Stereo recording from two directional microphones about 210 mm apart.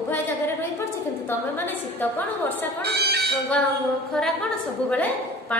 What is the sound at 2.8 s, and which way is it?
Speech, 50° right (ahead or behind).